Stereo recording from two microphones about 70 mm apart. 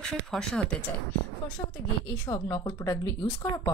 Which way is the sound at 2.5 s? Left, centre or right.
Left.